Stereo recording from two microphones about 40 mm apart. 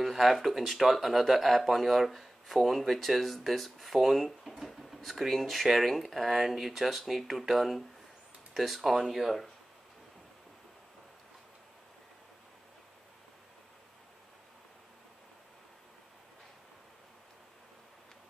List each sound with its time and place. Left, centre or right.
0.0 s speech: centre